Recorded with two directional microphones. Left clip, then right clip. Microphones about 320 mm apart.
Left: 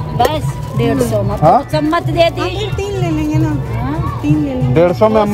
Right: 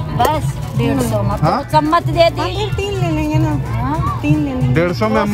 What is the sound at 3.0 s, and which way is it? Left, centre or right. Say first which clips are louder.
Music: left 2 dB; centre.